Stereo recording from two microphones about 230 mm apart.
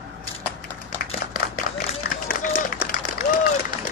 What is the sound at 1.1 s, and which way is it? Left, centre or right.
Run, left.